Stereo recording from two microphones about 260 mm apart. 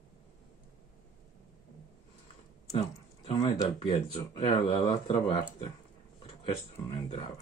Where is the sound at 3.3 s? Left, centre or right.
Centre.